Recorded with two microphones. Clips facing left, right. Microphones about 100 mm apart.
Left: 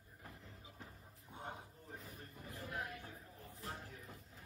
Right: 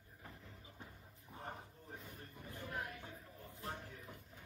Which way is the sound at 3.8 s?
35° left (ahead or behind).